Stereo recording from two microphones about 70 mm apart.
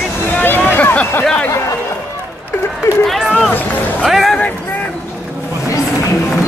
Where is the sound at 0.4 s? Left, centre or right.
Left.